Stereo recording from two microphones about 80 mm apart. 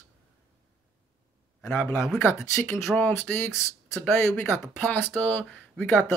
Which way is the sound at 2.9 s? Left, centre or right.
Centre.